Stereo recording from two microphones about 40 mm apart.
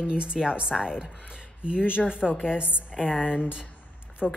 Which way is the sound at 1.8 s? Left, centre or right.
Left.